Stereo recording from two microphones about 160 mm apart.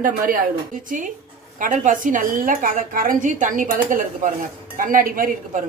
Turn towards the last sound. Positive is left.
turn(degrees=-60)  # may be behind; listen again after turning